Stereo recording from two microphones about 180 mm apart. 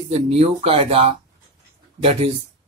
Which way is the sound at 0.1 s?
35° right (ahead or behind).